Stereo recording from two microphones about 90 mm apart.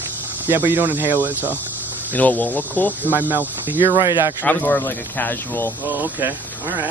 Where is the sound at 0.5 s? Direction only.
25° right (ahead or behind).